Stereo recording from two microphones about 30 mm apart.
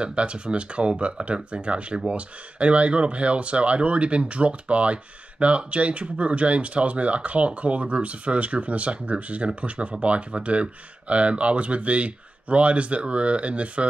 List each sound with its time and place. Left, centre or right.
0.0 s speech: right